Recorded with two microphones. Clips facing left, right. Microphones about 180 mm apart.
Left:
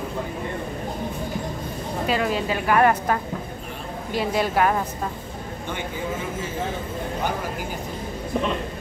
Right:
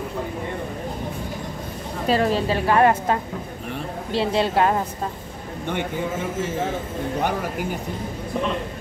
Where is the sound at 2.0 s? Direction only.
35° right (ahead or behind).